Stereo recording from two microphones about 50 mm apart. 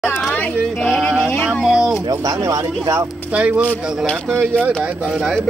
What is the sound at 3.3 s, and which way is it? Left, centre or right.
Speech, right.